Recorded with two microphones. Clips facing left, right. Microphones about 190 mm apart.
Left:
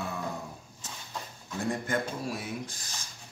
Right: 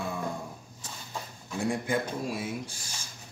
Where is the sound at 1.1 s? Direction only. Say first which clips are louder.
Right 2 dB; 10° right (ahead or behind).